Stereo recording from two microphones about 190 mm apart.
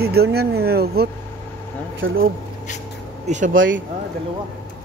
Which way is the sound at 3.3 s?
40° right (ahead or behind).